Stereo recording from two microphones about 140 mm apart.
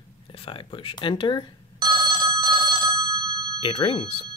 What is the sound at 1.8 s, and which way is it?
Telephone bell ringing, 30° right (ahead or behind).